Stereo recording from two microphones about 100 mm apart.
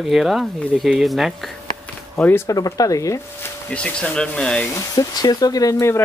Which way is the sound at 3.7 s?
10° left (ahead or behind).